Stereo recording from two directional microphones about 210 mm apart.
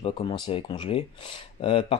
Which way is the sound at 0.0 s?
25° left (ahead or behind).